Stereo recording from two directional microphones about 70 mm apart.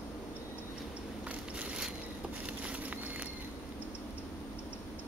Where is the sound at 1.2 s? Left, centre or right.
Centre.